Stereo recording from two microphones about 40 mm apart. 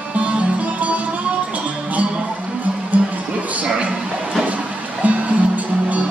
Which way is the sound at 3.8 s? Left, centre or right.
Right.